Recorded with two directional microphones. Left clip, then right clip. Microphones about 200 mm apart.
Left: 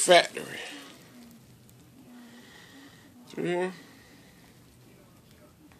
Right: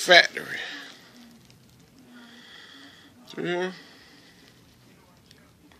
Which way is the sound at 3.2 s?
Centre (ahead or behind).